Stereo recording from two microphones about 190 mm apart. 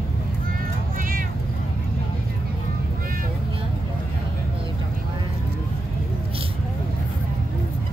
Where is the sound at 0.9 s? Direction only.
50° right (ahead or behind).